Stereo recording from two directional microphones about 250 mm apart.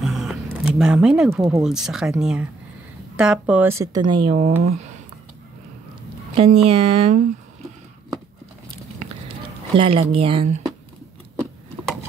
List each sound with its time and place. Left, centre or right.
0.0 s music: centre
1.6 s speech: centre
4.4 s speech: right
6.3 s speech: right
9.8 s speech: right